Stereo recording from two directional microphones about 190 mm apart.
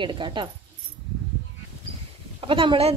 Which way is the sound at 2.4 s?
25° right (ahead or behind).